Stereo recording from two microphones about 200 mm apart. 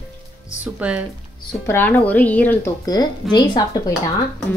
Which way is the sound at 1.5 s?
10° left (ahead or behind).